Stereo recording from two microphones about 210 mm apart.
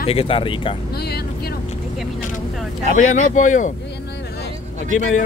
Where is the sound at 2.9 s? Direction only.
35° left (ahead or behind).